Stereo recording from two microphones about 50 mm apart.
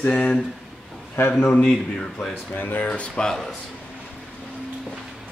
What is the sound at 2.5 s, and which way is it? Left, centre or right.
Speech, left.